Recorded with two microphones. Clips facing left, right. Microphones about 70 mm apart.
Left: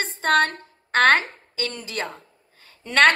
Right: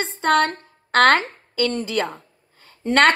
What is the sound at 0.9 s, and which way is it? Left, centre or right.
Speech, right.